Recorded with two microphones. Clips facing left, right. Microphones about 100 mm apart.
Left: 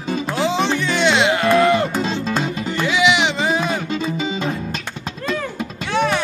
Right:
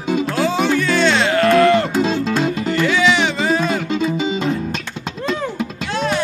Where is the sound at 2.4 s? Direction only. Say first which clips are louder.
Right 4 dB; 15° left (ahead or behind).